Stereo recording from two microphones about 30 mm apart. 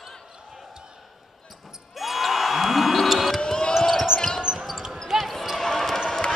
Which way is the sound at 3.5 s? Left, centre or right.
Left.